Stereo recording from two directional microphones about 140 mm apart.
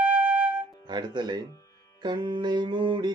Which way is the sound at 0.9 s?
30° right (ahead or behind).